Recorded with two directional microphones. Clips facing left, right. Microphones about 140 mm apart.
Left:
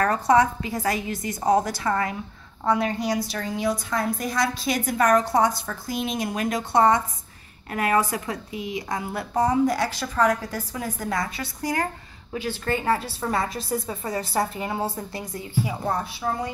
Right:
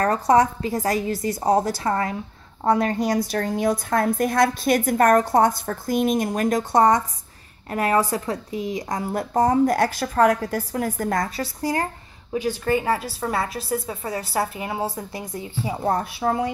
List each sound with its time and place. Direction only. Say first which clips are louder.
0.0 s a woman's voice: right 2 dB; 35° right (ahead or behind)
12.4 s a woman's voice: right 5 dB; 15° right (ahead or behind)
15.9 s a woman's voice: right 8 dB; 55° right (ahead or behind)